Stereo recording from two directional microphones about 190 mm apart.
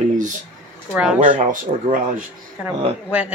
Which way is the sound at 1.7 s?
35° right (ahead or behind).